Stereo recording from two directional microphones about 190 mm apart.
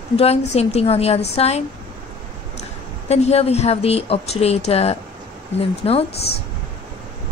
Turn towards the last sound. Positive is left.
turn(degrees=30)  # may be behind; listen again after turning